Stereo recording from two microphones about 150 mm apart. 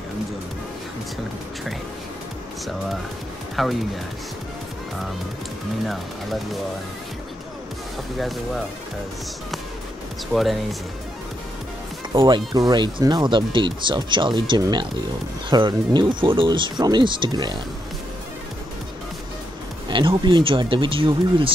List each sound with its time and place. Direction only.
3.6 s speech: centre (ahead or behind)
10.3 s speech: centre (ahead or behind)
12.2 s speech: 25° right (ahead or behind)
19.9 s speech: 35° right (ahead or behind)